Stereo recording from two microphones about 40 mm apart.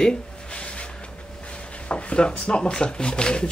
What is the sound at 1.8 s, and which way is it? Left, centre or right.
Speech, left.